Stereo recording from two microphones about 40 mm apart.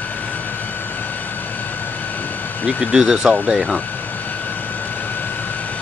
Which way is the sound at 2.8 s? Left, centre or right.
Centre.